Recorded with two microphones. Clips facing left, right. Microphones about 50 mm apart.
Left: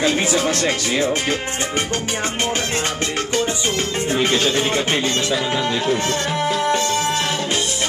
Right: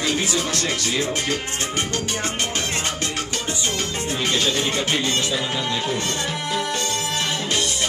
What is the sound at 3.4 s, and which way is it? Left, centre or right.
Music, left.